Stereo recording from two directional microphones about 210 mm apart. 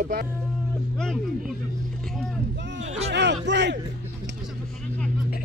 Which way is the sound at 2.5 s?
60° right (ahead or behind).